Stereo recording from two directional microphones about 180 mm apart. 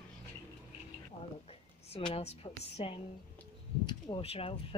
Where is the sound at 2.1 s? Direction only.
35° left (ahead or behind).